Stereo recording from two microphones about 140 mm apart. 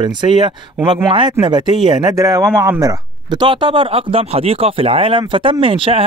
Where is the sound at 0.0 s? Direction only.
35° right (ahead or behind).